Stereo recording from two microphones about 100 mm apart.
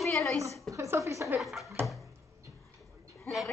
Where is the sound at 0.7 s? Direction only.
30° right (ahead or behind).